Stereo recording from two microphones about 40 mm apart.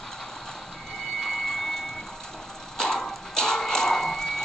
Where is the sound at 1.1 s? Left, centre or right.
Centre.